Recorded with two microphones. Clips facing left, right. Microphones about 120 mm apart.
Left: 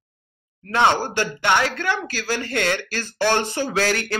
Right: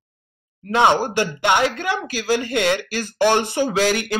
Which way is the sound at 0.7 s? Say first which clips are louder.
Right 2 dB; 15° right (ahead or behind).